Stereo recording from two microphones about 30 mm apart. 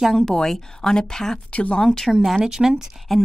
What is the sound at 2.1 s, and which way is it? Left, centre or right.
Speech, centre.